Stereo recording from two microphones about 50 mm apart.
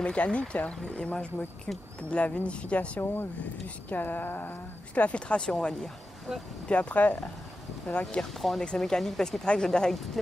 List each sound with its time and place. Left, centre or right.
0.0 s speech: left
3.6 s speech: left
4.9 s speech: left
6.7 s speech: left
8.2 s speech: centre